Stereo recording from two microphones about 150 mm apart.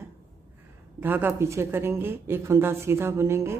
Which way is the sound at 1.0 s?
15° right (ahead or behind).